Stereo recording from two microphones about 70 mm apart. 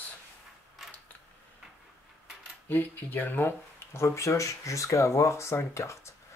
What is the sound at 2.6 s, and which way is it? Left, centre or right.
Speech, left.